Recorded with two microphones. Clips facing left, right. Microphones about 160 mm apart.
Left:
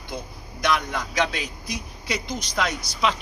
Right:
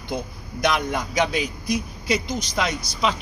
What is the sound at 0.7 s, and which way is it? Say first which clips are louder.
Speech: right 1 dB; 15° right (ahead or behind).